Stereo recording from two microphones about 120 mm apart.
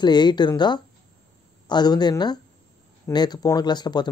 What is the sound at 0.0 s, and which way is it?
Speech, 35° left (ahead or behind).